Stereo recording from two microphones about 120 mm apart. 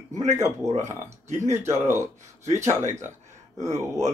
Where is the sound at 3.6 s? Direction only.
25° right (ahead or behind).